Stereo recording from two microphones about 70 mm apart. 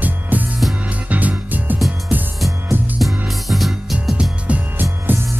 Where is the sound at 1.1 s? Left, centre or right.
Right.